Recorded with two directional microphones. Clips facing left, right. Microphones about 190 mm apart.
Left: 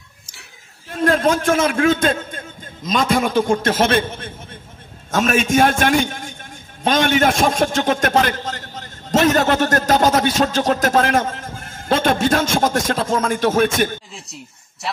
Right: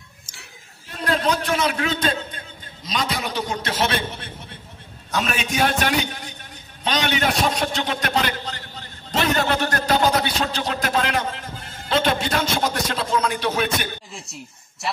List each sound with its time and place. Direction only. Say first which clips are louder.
0.9 s a man's voice: left 6 dB; 50° left (ahead or behind)
14.1 s speech: even; centre (ahead or behind)